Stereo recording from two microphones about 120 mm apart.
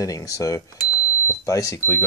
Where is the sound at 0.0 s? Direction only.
30° left (ahead or behind).